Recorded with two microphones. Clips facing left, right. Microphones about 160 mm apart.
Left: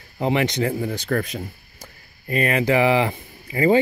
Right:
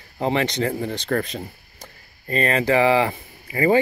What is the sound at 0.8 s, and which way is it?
Speech, 20° right (ahead or behind).